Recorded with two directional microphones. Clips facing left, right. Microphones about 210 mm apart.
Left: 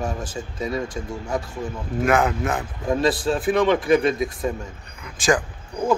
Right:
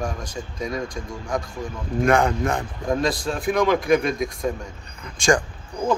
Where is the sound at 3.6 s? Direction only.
30° left (ahead or behind).